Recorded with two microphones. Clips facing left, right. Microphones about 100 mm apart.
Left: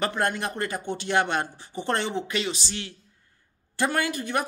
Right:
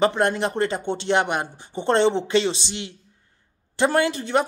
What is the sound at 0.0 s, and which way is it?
Speech, 20° right (ahead or behind).